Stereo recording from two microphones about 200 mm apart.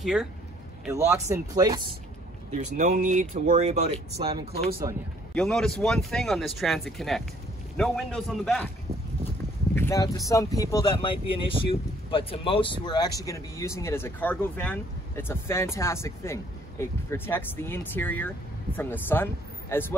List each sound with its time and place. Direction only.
0.0 s speech: 5° right (ahead or behind)
0.9 s speech: 15° right (ahead or behind)
2.5 s speech: 35° right (ahead or behind)
5.3 s speech: 5° left (ahead or behind)
9.8 s speech: 15° left (ahead or behind)